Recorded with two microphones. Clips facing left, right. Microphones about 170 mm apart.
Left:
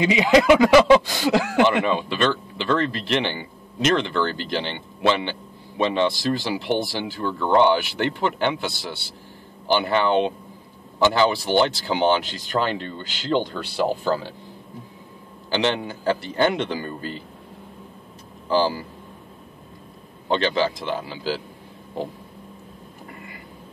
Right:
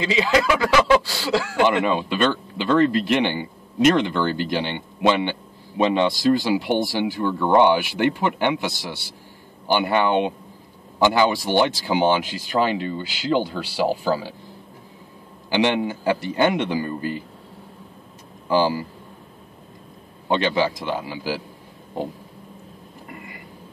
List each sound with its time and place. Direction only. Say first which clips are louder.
0.0 s speech: left 3 dB; 20° left (ahead or behind)
2.5 s speech: right 5 dB; 15° right (ahead or behind)
15.5 s speech: right 3 dB; 15° right (ahead or behind)
18.5 s speech: right 1 dB; 10° right (ahead or behind)
20.2 s speech: right 1 dB; 15° right (ahead or behind)